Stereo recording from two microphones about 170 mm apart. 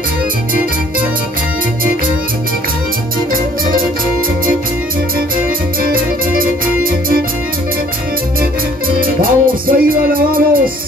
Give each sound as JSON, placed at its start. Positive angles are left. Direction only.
{"t": 5.8, "sound": "music", "side_deg": -55}
{"t": 9.0, "sound": "music", "side_deg": -55}